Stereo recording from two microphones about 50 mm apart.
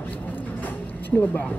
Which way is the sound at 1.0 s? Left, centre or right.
Left.